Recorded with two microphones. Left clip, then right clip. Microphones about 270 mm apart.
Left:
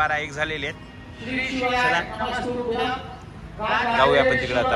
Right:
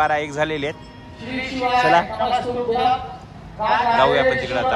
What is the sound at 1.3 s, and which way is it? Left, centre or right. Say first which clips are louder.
A man's voice: right 3 dB; right.